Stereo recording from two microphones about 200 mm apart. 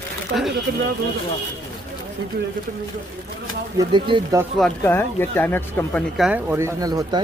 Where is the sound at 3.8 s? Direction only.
20° right (ahead or behind).